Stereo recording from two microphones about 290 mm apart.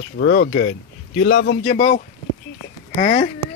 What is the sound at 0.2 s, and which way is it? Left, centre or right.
A man's voice, left.